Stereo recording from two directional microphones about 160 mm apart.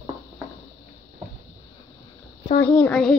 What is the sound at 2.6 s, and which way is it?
Speech, 10° left (ahead or behind).